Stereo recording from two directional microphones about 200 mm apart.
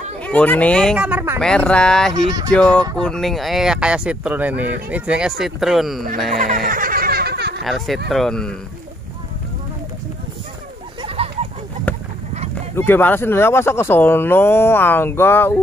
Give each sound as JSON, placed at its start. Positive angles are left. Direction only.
{"t": 0.2, "sound": "speech", "side_deg": 5}
{"t": 1.0, "sound": "speech", "side_deg": -10}
{"t": 1.4, "sound": "speech", "side_deg": 5}
{"t": 6.3, "sound": "music", "side_deg": -40}
{"t": 7.6, "sound": "speech", "side_deg": 0}
{"t": 11.2, "sound": "a sound", "side_deg": -30}
{"t": 11.9, "sound": "goose", "side_deg": 10}
{"t": 12.7, "sound": "speech", "side_deg": 10}